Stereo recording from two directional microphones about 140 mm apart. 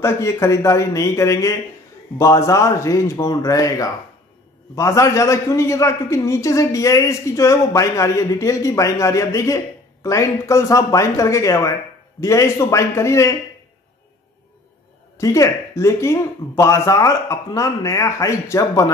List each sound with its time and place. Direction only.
0.0 s a man's voice: 20° left (ahead or behind)
15.1 s a man's voice: 20° left (ahead or behind)